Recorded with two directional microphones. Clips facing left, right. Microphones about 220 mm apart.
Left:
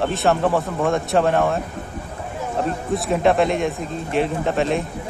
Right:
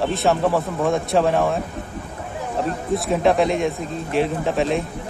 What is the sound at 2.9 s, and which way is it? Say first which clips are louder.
Speech: even; centre (ahead or behind).